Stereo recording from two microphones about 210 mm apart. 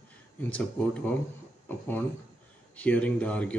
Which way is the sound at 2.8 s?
5° left (ahead or behind).